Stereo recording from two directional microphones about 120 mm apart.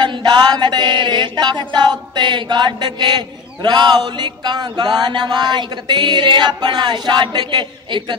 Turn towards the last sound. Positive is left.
turn(degrees=-40)  # may be behind; listen again after turning